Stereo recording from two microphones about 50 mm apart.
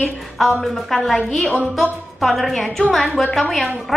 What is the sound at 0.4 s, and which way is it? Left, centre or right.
Speech, centre.